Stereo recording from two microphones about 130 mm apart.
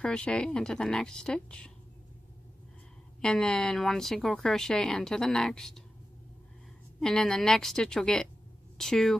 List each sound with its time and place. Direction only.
0.0 s speech: 5° left (ahead or behind)
3.2 s speech: 5° left (ahead or behind)
7.0 s speech: 5° left (ahead or behind)